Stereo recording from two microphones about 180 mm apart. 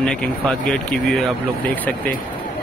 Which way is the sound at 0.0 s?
5° left (ahead or behind).